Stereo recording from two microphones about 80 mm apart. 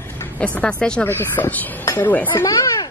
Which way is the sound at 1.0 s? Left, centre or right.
Left.